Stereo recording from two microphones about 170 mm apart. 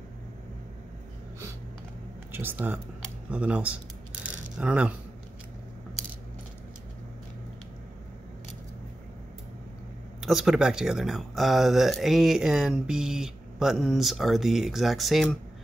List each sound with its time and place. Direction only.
2.3 s speech: 10° right (ahead or behind)
3.3 s coin: 5° right (ahead or behind)
10.2 s speech: 5° right (ahead or behind)